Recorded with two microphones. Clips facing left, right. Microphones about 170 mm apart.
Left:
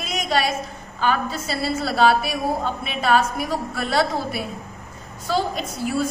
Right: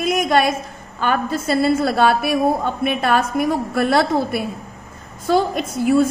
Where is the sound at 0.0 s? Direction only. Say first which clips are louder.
Right 6 dB; 55° right (ahead or behind).